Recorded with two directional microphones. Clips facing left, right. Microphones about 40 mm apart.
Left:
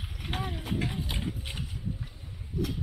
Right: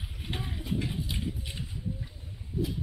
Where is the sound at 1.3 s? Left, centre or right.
Left.